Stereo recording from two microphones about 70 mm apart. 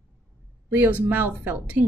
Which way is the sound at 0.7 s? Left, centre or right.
Right.